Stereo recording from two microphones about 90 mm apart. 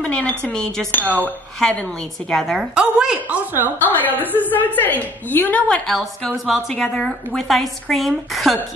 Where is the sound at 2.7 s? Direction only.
10° right (ahead or behind).